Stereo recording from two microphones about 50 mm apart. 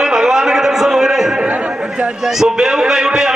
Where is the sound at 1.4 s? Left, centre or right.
Right.